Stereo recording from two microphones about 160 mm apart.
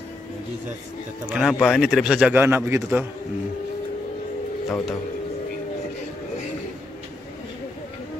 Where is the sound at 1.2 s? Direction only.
5° right (ahead or behind).